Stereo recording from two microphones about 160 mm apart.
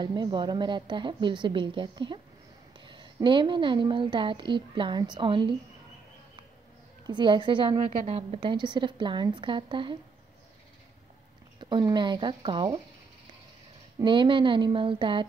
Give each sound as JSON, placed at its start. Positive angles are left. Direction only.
{"t": 0.0, "sound": "a woman's voice", "side_deg": -25}
{"t": 7.1, "sound": "a woman's voice", "side_deg": -30}
{"t": 7.8, "sound": "a woman's voice", "side_deg": -40}
{"t": 11.7, "sound": "a woman's voice", "side_deg": -30}
{"t": 14.0, "sound": "a woman's voice", "side_deg": -30}